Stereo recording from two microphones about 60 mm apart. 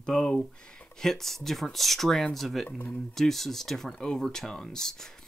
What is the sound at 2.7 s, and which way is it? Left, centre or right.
Speech, left.